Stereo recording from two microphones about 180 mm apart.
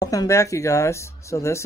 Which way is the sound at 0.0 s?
20° left (ahead or behind).